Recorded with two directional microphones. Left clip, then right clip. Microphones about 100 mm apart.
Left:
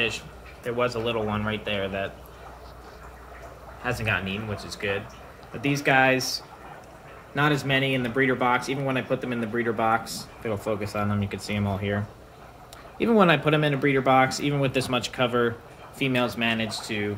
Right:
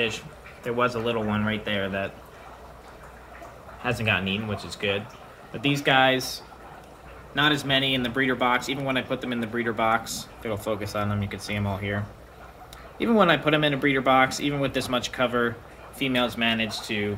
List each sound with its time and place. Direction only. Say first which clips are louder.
0.7 s speech: right 1 dB; 15° right (ahead or behind)
3.8 s speech: right 2 dB; 15° right (ahead or behind)
5.6 s speech: even; 5° right (ahead or behind)
7.3 s a man's voice: right 1 dB; 20° left (ahead or behind)
7.6 s speech: right 1 dB; 10° right (ahead or behind)
9.8 s speech: right 2 dB; centre (ahead or behind)